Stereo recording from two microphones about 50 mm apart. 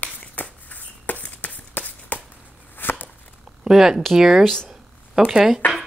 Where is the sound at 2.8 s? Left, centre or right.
Left.